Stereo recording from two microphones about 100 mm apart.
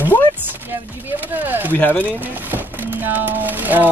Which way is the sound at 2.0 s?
15° right (ahead or behind).